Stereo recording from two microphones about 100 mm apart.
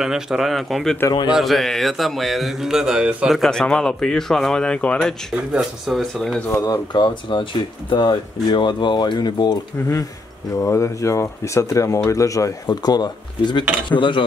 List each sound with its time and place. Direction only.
0.0 s speech: 5° right (ahead or behind)
3.3 s speech: 5° left (ahead or behind)
5.3 s speech: 5° right (ahead or behind)
6.6 s speech: 45° left (ahead or behind)
10.5 s speech: 30° left (ahead or behind)
12.6 s speech: 45° left (ahead or behind)